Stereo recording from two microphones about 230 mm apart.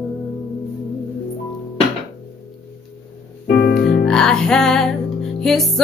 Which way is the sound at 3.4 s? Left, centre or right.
Left.